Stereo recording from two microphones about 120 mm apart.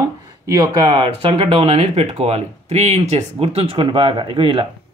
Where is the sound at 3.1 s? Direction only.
60° right (ahead or behind).